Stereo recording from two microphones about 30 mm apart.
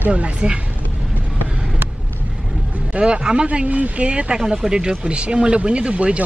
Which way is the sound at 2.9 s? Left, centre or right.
Right.